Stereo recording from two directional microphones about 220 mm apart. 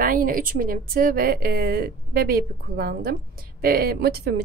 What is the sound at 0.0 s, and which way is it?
A woman's voice, 40° right (ahead or behind).